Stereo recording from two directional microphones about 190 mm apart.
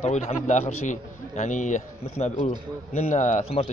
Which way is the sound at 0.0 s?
35° left (ahead or behind).